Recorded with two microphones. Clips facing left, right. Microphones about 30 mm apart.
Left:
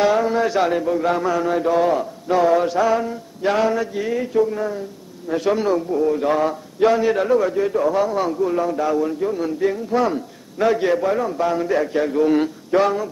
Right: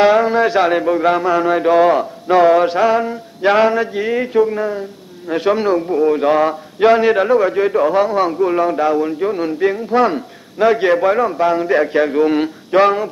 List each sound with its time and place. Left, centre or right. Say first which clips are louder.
0.0 s speech: right 5 dB; right
5.9 s speech: right 5 dB; right
11.3 s speech: right 5 dB; right